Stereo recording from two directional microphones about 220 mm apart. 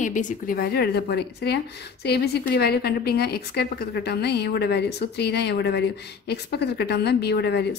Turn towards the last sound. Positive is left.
turn(degrees=50)  # may be behind; listen again after turning